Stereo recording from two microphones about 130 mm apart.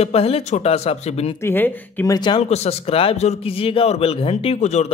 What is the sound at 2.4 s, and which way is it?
A man's voice, 55° left (ahead or behind).